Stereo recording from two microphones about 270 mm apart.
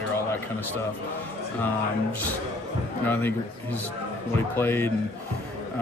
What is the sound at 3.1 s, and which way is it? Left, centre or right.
Speech, centre.